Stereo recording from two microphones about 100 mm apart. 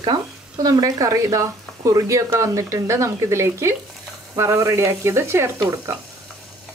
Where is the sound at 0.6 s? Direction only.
40° right (ahead or behind).